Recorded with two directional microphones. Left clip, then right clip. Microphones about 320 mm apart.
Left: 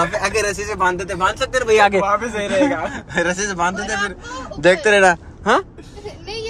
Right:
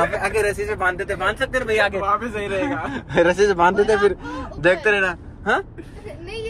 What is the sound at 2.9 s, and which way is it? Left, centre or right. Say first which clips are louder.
Speech: right 2 dB; centre.